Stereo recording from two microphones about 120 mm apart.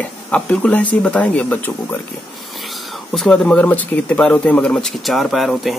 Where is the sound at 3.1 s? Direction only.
5° left (ahead or behind).